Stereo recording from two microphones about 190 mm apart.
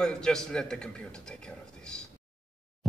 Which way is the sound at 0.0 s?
5° left (ahead or behind).